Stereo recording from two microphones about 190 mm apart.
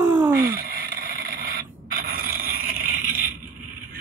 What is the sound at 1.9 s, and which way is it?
Filing, 45° right (ahead or behind).